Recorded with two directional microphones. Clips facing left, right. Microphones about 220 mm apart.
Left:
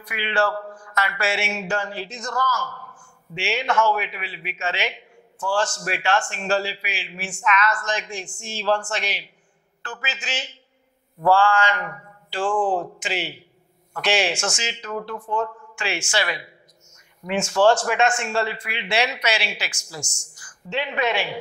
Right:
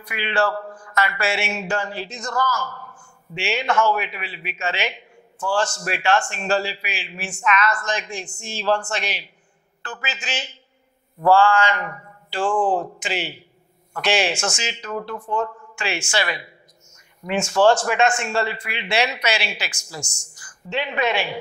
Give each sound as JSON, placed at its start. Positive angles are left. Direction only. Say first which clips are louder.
{"t": 0.1, "sound": "a man's voice", "louder": "right 1 dB", "side_deg": -15}
{"t": 11.3, "sound": "a sound", "louder": "right 4 dB", "side_deg": -15}
{"t": 13.0, "sound": "a man's voice", "louder": "right 1 dB", "side_deg": -15}